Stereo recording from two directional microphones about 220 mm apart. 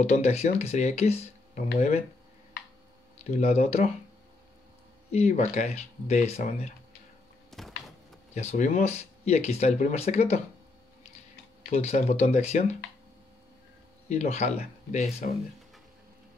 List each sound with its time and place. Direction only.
0.0 s speech: 30° left (ahead or behind)
3.3 s speech: 30° left (ahead or behind)
5.1 s speech: 30° left (ahead or behind)
7.5 s a sound: centre (ahead or behind)
8.4 s speech: 30° left (ahead or behind)
11.7 s speech: 30° left (ahead or behind)
14.0 s speech: 30° left (ahead or behind)